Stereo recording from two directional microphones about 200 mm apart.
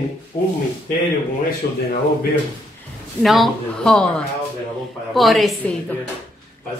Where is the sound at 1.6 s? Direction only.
55° left (ahead or behind).